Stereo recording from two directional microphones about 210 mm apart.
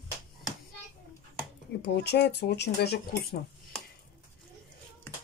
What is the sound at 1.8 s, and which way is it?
Speech, 50° left (ahead or behind).